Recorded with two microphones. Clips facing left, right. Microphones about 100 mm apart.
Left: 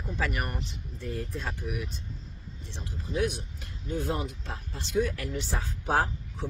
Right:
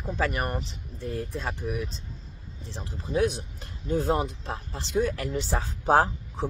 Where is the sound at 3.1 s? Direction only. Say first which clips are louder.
Right 4 dB; 30° right (ahead or behind).